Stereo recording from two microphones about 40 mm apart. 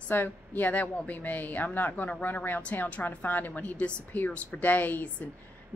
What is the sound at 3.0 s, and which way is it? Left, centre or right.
Speech, left.